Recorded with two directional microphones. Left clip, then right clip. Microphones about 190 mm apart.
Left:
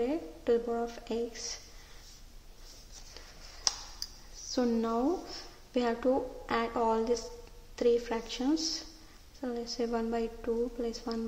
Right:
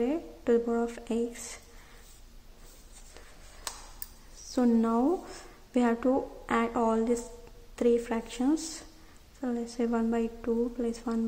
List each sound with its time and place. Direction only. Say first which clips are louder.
0.0 s speech: right 2 dB; 15° right (ahead or behind)
4.5 s a woman's voice: right 3 dB; 15° right (ahead or behind)